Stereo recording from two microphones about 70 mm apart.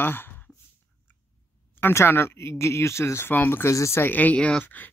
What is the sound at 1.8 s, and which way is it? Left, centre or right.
Speech, left.